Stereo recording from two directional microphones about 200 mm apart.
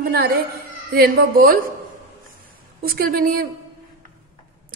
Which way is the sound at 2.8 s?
45° right (ahead or behind).